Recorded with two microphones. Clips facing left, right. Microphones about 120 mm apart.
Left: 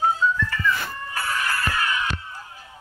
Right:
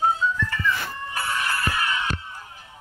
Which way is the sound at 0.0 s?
30° right (ahead or behind).